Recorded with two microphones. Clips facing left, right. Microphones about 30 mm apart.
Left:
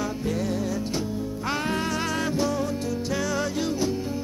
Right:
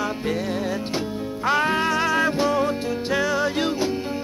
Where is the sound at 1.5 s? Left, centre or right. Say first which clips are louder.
Right 7 dB; right.